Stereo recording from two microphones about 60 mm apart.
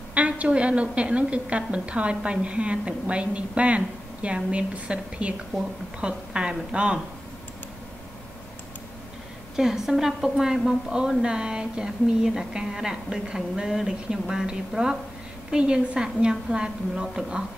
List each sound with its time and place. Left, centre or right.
0.1 s a woman's voice: right
9.6 s a woman's voice: centre